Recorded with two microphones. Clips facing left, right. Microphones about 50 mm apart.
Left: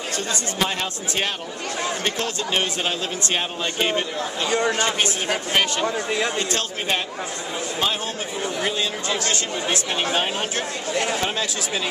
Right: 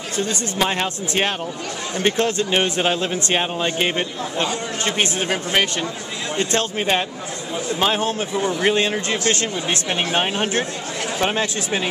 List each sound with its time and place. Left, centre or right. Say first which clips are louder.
0.6 s a man's voice: right 5 dB; right
2.5 s a man's voice: right 4 dB; centre
4.5 s speech: left 5 dB; left
5.5 s speech: even; centre
7.8 s a man's voice: right 6 dB; right
8.6 s a man's voice: right 6 dB; right